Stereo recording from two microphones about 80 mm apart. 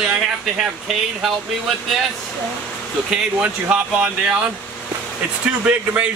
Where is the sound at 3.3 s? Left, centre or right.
Centre.